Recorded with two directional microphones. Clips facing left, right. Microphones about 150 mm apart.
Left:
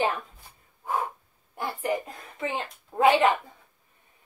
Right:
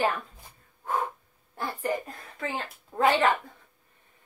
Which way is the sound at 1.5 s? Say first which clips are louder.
Left 1 dB; 15° left (ahead or behind).